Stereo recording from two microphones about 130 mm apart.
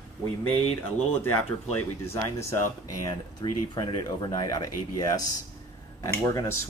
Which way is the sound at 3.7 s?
35° left (ahead or behind).